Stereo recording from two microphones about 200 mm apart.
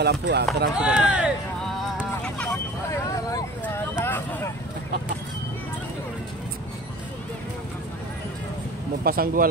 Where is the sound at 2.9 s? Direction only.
15° left (ahead or behind).